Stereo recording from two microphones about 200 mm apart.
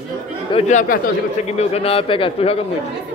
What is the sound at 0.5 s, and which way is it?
A man's voice, 35° left (ahead or behind).